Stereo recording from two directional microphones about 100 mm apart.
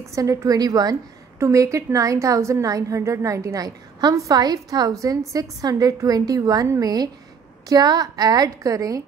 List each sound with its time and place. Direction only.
0.1 s a woman's voice: 35° right (ahead or behind)